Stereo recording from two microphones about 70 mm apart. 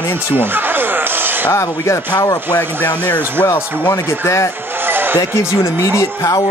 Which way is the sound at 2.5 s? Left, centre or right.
Left.